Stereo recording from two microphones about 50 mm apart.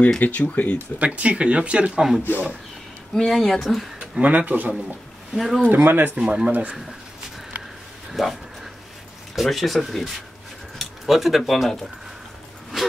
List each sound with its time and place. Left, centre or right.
0.2 s speech: left
0.9 s speech: right
2.0 s speech: centre
3.2 s speech: centre
4.0 s speech: right
5.3 s speech: centre
5.6 s speech: right
6.2 s speech: right
8.1 s speech: centre